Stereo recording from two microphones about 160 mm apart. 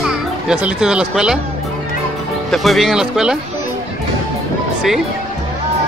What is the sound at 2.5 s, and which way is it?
Speech, centre (ahead or behind).